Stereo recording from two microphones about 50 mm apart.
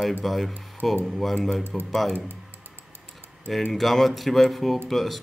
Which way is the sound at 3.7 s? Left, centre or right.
Centre.